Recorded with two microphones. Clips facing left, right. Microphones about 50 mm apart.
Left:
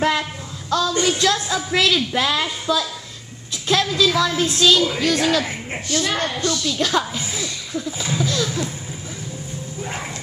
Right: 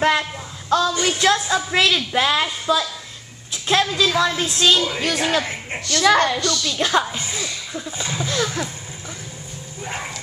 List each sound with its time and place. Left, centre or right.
0.0 s a woman's voice: centre
0.7 s a woman's voice: centre
1.0 s music: right
1.4 s a woman's voice: centre
4.3 s speech: centre
4.6 s a woman's voice: centre
5.4 s a woman's voice: centre
5.9 s a woman's voice: right
6.8 s a woman's voice: centre
7.1 s speech: centre
9.8 s a sound: centre